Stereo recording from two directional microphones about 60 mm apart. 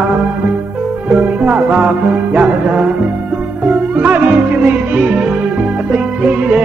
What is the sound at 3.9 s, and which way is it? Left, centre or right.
Music, right.